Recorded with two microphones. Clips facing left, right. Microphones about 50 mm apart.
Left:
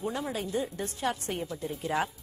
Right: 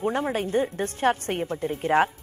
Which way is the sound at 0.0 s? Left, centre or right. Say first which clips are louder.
Right 7 dB; right.